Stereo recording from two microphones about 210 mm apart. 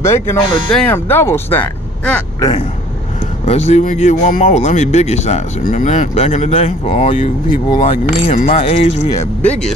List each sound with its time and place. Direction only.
0.0 s speech: 10° left (ahead or behind)
3.4 s speech: 30° left (ahead or behind)
9.1 s speech: 5° left (ahead or behind)